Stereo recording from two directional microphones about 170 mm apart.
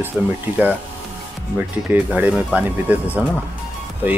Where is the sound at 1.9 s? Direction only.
10° right (ahead or behind).